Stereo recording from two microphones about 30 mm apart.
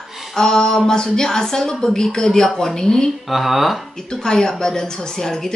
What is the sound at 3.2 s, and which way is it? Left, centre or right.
Speech, centre.